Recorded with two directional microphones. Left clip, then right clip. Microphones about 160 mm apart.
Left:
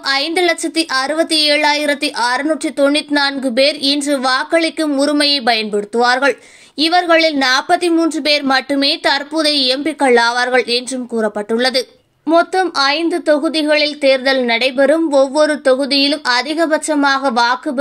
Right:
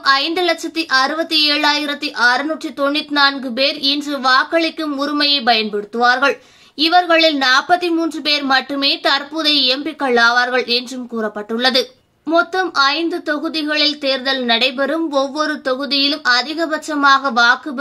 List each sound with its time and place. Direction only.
0.0 s a woman's voice: 20° left (ahead or behind)